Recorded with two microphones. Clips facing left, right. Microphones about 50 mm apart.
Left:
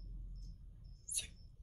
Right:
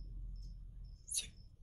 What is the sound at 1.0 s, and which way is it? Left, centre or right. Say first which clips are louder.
Mouse: right 1 dB; centre.